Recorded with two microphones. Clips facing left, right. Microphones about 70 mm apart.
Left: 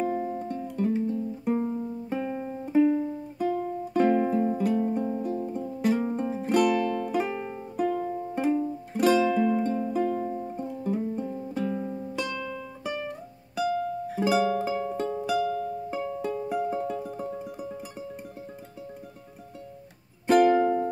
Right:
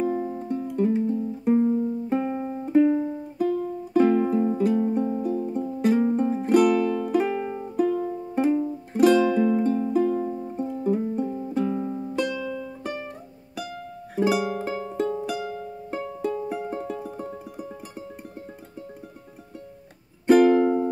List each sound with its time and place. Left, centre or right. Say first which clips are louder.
0.0 s music: right 2 dB; centre
2.6 s music: right 3 dB; centre
2.9 s music: right 2 dB; centre
3.3 s music: right 3 dB; centre
12.2 s music: right 6 dB; centre
14.1 s music: right 1 dB; centre
20.2 s music: right 3 dB; centre
20.6 s music: right 3 dB; centre